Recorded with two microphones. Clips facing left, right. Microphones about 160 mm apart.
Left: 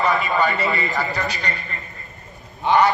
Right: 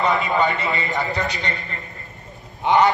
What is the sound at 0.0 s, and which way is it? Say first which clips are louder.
A man's voice: even; 20° right (ahead or behind).